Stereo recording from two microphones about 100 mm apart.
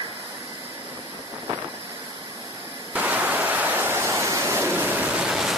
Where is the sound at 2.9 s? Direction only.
15° right (ahead or behind).